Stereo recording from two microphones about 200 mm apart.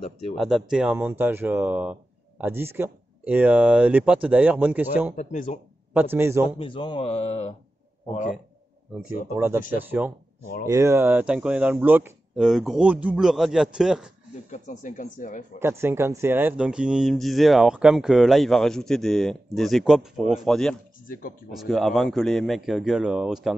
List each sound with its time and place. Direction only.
0.4 s speech: centre (ahead or behind)
5.1 s speech: 40° left (ahead or behind)
5.9 s speech: 10° right (ahead or behind)
6.6 s speech: 25° left (ahead or behind)
9.0 s speech: 10° right (ahead or behind)
10.4 s speech: 45° left (ahead or behind)
10.7 s speech: 15° right (ahead or behind)
14.5 s speech: 40° left (ahead or behind)
15.6 s speech: 10° right (ahead or behind)